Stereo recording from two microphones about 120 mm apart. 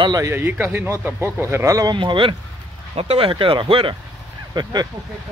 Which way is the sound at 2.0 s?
45° right (ahead or behind).